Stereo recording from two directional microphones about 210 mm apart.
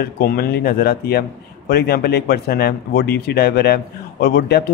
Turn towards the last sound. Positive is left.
turn(degrees=50)  # may be behind; listen again after turning